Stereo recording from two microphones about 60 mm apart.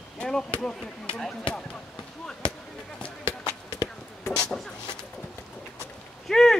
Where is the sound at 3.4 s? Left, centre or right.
Left.